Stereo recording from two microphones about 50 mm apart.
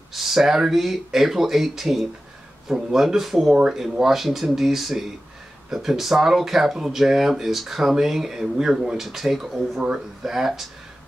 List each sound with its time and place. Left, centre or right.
0.1 s speech: centre
9.8 s speech: centre
10.2 s speech: centre